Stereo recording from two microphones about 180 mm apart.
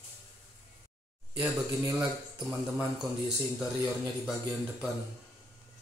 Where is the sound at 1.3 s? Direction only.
10° right (ahead or behind).